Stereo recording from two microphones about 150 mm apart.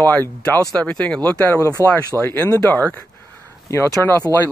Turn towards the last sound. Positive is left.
turn(degrees=15)  # may be behind; listen again after turning